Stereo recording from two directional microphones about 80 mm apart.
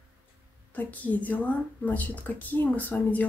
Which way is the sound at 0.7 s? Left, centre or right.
Centre.